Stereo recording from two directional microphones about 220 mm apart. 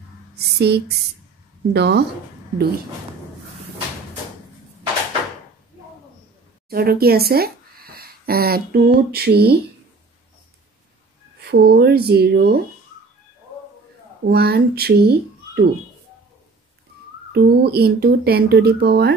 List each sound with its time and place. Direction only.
0.6 s speech: 50° right (ahead or behind)
6.7 s speech: 45° right (ahead or behind)
11.4 s speech: 45° right (ahead or behind)
14.2 s speech: 45° right (ahead or behind)
17.3 s speech: 45° right (ahead or behind)